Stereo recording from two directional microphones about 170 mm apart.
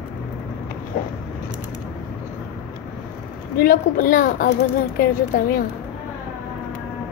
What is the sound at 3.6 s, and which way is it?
A woman's voice, 55° left (ahead or behind).